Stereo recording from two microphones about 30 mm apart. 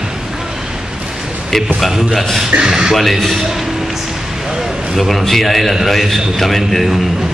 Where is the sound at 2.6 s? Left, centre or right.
Right.